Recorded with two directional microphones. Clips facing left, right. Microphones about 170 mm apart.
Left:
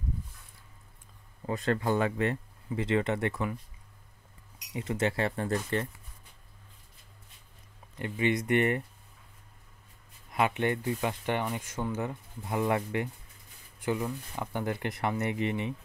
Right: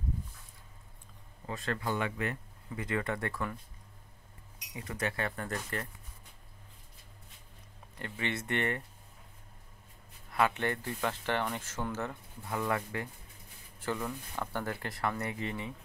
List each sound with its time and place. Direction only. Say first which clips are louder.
1.5 s speech: left 6 dB; 35° left (ahead or behind)
4.7 s speech: left 6 dB; 25° left (ahead or behind)
8.0 s speech: left 8 dB; 15° left (ahead or behind)
10.3 s speech: left 2 dB; 15° left (ahead or behind)